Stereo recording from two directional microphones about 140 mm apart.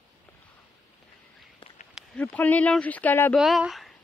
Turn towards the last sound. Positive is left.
turn(degrees=0)  # may be behind; listen again after turning